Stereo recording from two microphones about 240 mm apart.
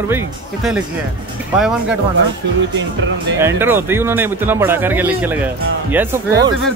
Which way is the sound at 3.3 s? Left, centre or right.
Centre.